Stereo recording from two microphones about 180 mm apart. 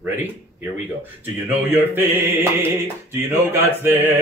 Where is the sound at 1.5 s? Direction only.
10° right (ahead or behind).